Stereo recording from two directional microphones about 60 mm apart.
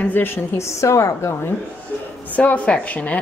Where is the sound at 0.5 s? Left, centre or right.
Left.